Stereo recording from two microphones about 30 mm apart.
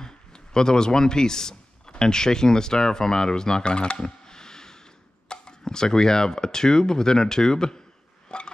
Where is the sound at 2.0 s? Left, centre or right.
Left.